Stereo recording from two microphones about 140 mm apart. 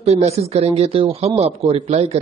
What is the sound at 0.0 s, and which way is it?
Speech, 50° right (ahead or behind).